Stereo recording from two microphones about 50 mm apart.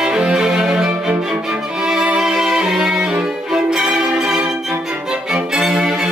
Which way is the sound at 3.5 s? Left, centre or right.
Centre.